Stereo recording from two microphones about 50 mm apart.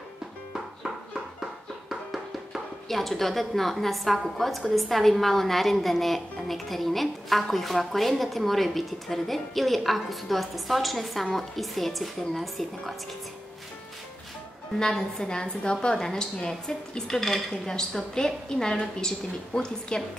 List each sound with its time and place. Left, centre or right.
1.4 s speech: centre
14.8 s a woman's voice: centre